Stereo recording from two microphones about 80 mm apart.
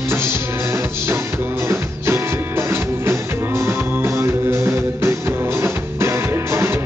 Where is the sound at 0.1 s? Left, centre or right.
Right.